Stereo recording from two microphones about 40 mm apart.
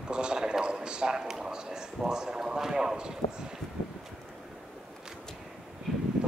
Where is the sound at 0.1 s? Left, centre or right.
Right.